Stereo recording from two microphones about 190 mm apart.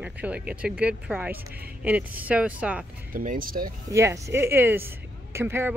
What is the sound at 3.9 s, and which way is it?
A woman's voice, 15° right (ahead or behind).